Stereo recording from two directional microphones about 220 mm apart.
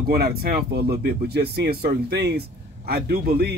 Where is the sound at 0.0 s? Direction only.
45° right (ahead or behind).